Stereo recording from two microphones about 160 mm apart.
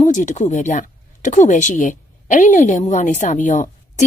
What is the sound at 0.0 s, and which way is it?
A woman's voice, 50° left (ahead or behind).